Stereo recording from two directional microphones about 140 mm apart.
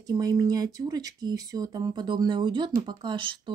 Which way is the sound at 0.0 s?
25° right (ahead or behind).